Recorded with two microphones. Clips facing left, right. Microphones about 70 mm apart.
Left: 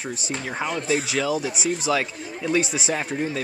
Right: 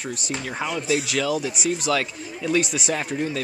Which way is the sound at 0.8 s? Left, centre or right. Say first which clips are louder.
Right 1 dB; left.